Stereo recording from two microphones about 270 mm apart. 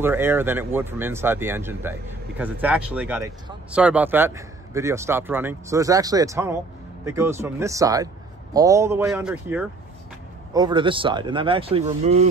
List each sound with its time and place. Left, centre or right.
0.0 s speech: centre; by 12.3 s right